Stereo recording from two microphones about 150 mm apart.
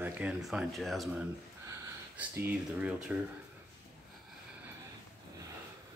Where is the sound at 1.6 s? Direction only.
15° right (ahead or behind).